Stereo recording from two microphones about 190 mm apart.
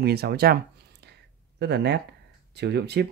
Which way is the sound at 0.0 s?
55° right (ahead or behind).